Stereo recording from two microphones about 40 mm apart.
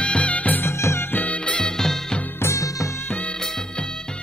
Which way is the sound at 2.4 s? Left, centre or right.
Left.